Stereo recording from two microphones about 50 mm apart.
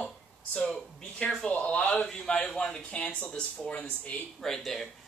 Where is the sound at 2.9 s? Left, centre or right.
Left.